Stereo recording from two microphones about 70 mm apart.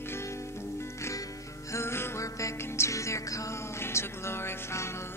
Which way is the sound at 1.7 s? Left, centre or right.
Left.